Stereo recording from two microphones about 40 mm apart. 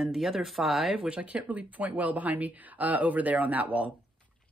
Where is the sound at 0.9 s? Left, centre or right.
Right.